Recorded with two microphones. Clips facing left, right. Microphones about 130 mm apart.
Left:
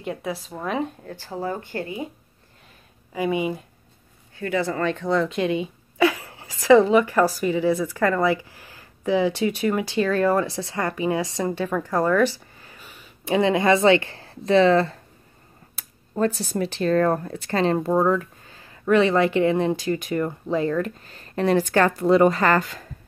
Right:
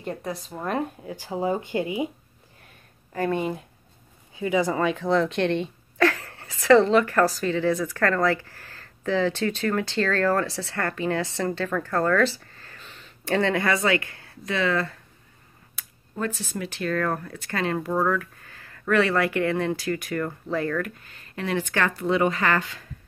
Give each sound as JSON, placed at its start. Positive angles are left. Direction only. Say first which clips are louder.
{"t": 0.0, "sound": "speech", "louder": "left 2 dB", "side_deg": 5}
{"t": 1.1, "sound": "speech", "louder": "right 5 dB", "side_deg": -15}
{"t": 3.1, "sound": "a woman's voice", "louder": "left 2 dB", "side_deg": 10}
{"t": 4.4, "sound": "a woman's voice", "louder": "right 1 dB", "side_deg": -15}
{"t": 16.2, "sound": "speech", "louder": "left 7 dB", "side_deg": 35}